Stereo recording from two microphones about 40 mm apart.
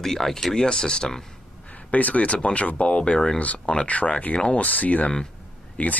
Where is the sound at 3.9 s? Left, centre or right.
Left.